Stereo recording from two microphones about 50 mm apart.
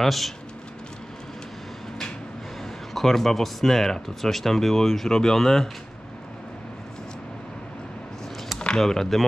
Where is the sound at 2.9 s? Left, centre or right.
Centre.